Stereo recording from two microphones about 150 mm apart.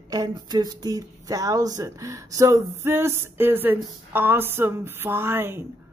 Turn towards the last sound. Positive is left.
turn(degrees=-15)  # may be behind; listen again after turning